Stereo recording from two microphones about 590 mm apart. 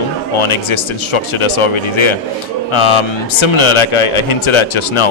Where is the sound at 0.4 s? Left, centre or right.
Left.